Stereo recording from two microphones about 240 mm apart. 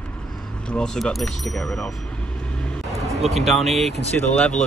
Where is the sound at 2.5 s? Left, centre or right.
Centre.